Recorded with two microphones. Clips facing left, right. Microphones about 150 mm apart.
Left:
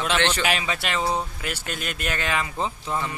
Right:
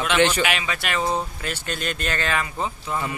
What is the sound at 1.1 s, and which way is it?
Speech, 10° left (ahead or behind).